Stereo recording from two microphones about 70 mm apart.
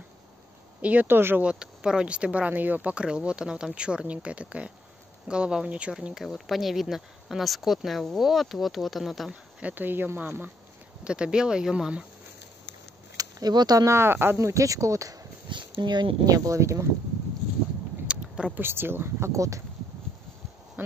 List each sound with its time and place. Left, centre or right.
0.8 s speech: right
1.4 s speech: centre
9.3 s speech: centre
11.1 s speech: centre
13.2 s speech: right
13.8 s speech: right
14.5 s speech: right
15.8 s speech: right
18.0 s a sound: centre
18.5 s speech: right